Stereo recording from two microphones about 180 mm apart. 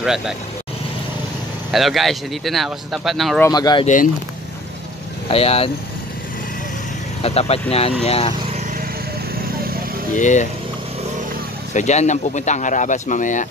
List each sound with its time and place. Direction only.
0.0 s speech: 5° right (ahead or behind)
1.7 s speech: centre (ahead or behind)
3.4 s speech: 20° left (ahead or behind)
3.8 s speech: 45° left (ahead or behind)
5.3 s speech: 35° left (ahead or behind)
7.2 s speech: 35° left (ahead or behind)
10.1 s speech: 45° left (ahead or behind)
11.7 s speech: 40° left (ahead or behind)